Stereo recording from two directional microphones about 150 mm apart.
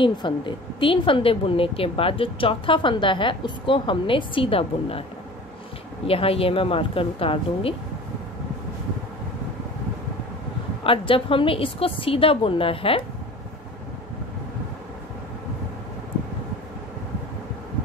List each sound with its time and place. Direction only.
0.0 s a woman's voice: 30° left (ahead or behind)
6.0 s a woman's voice: 40° left (ahead or behind)
10.8 s a woman's voice: 35° left (ahead or behind)